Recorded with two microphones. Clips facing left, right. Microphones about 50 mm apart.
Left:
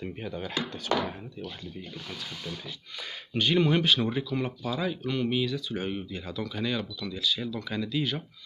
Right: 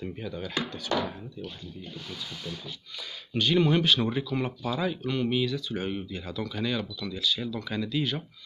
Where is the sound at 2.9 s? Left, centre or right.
Left.